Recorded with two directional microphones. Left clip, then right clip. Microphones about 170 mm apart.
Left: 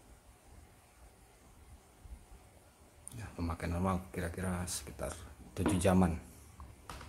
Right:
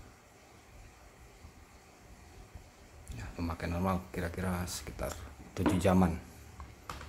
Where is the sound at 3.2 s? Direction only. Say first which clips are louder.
Right 2 dB; 5° left (ahead or behind).